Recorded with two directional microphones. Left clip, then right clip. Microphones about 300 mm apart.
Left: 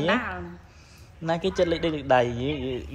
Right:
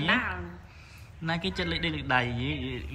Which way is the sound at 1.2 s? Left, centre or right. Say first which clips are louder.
Left 7 dB; centre.